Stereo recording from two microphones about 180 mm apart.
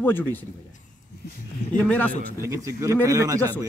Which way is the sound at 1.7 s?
10° left (ahead or behind).